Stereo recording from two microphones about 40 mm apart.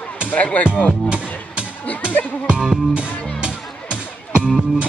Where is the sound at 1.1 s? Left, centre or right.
Right.